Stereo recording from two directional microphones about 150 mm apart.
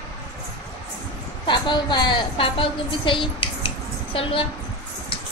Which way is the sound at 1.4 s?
30° left (ahead or behind).